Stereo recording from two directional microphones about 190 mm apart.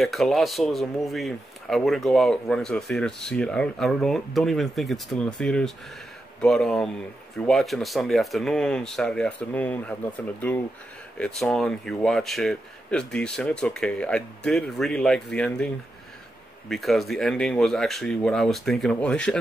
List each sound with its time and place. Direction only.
0.0 s speech: centre (ahead or behind)